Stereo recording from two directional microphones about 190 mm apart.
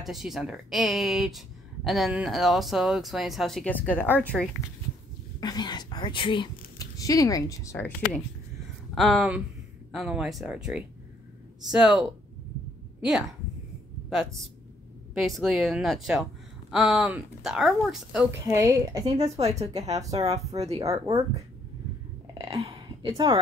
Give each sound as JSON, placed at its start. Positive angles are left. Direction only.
{"t": 0.0, "sound": "speech", "side_deg": 0}
{"t": 5.4, "sound": "speech", "side_deg": 20}
{"t": 8.9, "sound": "speech", "side_deg": 0}
{"t": 14.0, "sound": "speech", "side_deg": 0}
{"t": 18.5, "sound": "a woman's voice", "side_deg": -20}
{"t": 19.1, "sound": "a woman's voice", "side_deg": -35}
{"t": 20.0, "sound": "a woman's voice", "side_deg": -20}
{"t": 20.5, "sound": "a woman's voice", "side_deg": -35}
{"t": 20.8, "sound": "speech", "side_deg": -15}
{"t": 22.4, "sound": "a woman's voice", "side_deg": -30}